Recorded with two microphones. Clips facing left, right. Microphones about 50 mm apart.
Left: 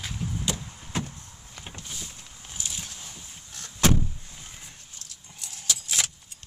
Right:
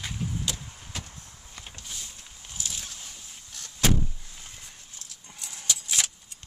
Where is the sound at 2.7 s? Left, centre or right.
Centre.